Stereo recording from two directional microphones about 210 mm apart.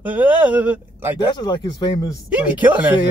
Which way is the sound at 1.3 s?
20° left (ahead or behind).